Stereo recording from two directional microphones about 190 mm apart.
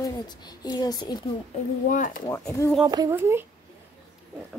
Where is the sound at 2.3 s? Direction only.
15° left (ahead or behind).